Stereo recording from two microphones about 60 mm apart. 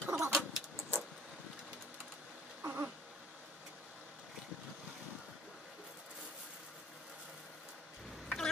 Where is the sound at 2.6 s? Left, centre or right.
Right.